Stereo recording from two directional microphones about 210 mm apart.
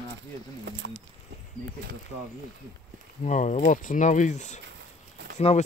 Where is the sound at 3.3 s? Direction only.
35° left (ahead or behind).